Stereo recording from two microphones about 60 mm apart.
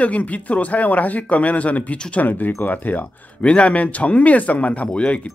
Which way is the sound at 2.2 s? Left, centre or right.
Left.